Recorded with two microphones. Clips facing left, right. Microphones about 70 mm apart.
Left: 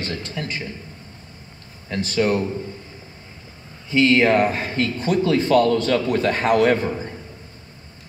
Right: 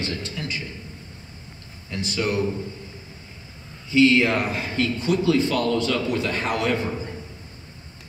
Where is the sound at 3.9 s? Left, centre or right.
Left.